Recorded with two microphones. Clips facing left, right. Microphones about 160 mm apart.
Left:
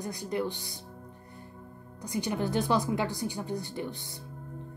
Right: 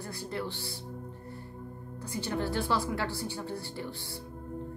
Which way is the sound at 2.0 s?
15° left (ahead or behind).